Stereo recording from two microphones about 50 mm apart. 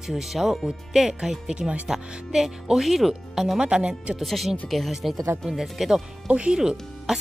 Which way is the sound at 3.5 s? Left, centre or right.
Centre.